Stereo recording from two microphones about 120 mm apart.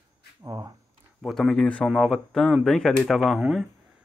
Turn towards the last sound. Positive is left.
turn(degrees=-5)  # may be behind; listen again after turning